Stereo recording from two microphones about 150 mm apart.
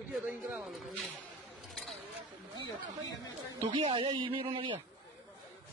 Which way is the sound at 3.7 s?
35° right (ahead or behind).